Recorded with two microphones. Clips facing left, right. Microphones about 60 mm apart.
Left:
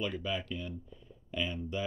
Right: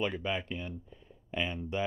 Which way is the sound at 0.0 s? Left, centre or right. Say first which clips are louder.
Right 2 dB; right.